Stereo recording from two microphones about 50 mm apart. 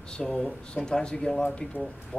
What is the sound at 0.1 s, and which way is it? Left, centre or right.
A man's voice, centre.